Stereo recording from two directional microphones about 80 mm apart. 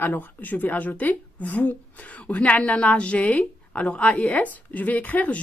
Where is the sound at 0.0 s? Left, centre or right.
Left.